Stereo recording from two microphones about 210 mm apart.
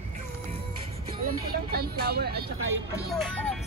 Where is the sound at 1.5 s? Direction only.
45° right (ahead or behind).